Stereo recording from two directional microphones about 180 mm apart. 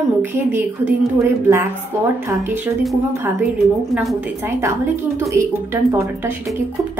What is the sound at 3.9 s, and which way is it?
Speech, centre (ahead or behind).